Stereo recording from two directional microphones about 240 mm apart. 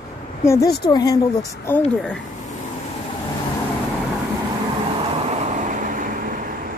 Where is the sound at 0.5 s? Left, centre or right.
Centre.